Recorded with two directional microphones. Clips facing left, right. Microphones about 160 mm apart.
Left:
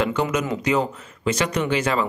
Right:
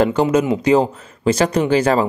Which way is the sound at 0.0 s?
35° right (ahead or behind).